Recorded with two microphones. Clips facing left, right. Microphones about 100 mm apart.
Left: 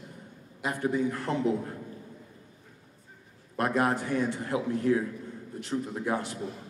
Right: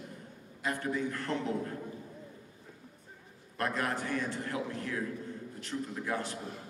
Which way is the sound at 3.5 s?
20° left (ahead or behind).